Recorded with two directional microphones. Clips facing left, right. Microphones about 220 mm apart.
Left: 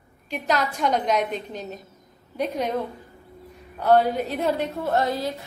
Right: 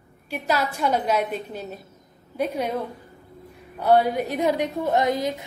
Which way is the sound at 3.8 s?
10° right (ahead or behind).